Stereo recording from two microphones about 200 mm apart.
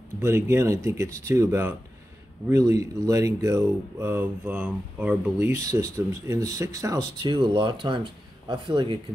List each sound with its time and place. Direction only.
0.2 s speech: 10° right (ahead or behind)